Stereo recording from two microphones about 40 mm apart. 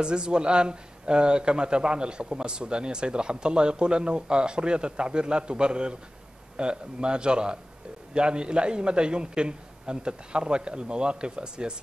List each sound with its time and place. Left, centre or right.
0.0 s a man's voice: right